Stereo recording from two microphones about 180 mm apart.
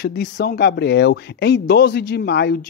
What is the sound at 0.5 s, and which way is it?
Speech, 65° left (ahead or behind).